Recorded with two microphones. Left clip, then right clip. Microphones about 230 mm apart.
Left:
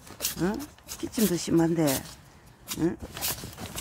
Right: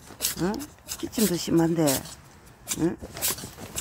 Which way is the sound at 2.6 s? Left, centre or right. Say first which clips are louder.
Right 2 dB; centre.